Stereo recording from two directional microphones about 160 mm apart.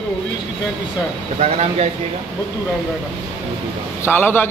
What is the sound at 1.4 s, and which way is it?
Speech, 40° right (ahead or behind).